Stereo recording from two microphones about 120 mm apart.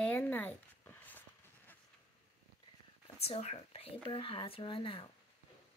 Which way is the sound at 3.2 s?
60° left (ahead or behind).